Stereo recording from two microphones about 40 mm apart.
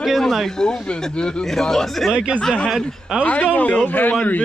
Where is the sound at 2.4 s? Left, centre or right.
Centre.